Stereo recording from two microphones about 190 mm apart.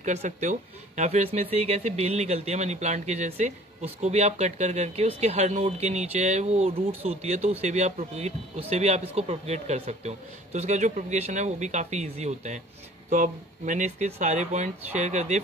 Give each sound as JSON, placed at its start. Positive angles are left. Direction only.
{"t": 0.0, "sound": "speech", "side_deg": -40}